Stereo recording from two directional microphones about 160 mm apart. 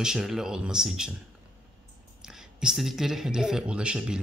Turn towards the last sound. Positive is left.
turn(degrees=-5)  # may be behind; listen again after turning